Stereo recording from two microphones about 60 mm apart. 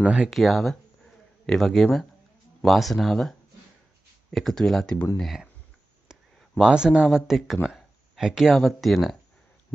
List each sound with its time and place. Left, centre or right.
0.0 s speech: centre
0.3 s speech: centre
5.2 s speech: centre
6.6 s speech: centre